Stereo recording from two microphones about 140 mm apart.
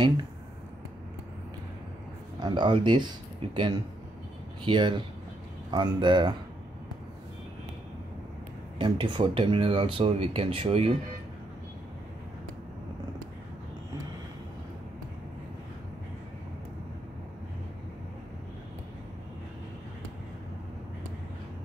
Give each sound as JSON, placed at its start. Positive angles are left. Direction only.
{"t": 2.4, "sound": "speech", "side_deg": -35}
{"t": 8.7, "sound": "speech", "side_deg": -35}